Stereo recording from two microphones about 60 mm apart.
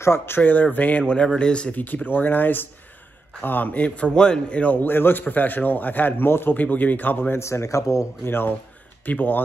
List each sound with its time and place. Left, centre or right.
0.0 s speech: left
0.4 s a man's voice: left
1.8 s a man's voice: left
7.4 s speech: left
8.3 s a man's voice: left